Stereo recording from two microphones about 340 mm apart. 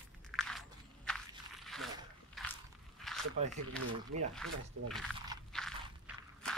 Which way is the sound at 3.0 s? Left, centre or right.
Centre.